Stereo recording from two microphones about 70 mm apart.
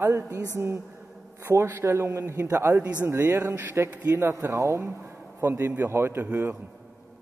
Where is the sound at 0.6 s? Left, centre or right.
Right.